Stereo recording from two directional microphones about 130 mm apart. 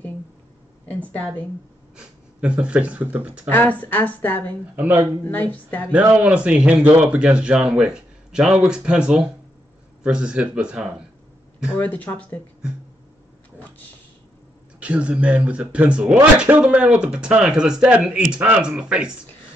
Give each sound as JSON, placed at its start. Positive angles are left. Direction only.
{"t": 2.0, "sound": "speech", "side_deg": -5}
{"t": 3.4, "sound": "a woman's voice", "side_deg": 15}
{"t": 5.9, "sound": "a man's voice", "side_deg": -10}
{"t": 11.7, "sound": "a woman's voice", "side_deg": 10}
{"t": 14.8, "sound": "speech", "side_deg": -10}